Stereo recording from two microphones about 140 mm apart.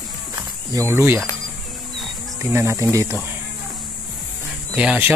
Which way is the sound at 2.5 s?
20° right (ahead or behind).